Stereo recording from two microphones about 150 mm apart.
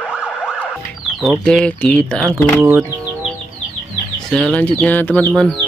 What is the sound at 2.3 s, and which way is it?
Speech, 15° right (ahead or behind).